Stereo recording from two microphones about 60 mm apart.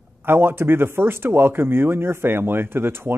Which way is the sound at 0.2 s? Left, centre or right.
Right.